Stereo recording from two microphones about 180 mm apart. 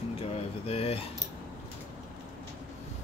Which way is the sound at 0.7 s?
35° left (ahead or behind).